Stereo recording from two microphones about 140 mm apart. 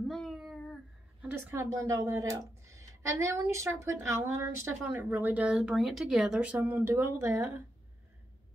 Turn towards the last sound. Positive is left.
turn(degrees=-20)  # may be behind; listen again after turning